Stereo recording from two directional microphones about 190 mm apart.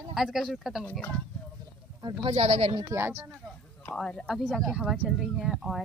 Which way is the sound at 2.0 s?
20° right (ahead or behind).